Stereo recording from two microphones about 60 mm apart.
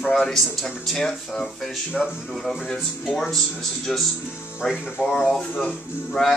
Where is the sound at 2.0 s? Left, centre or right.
Centre.